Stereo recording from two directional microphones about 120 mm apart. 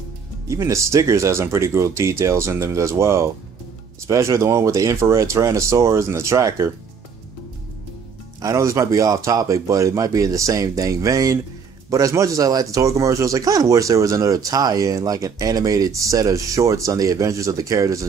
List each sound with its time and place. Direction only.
0.5 s speech: 25° right (ahead or behind)
8.4 s speech: 25° right (ahead or behind)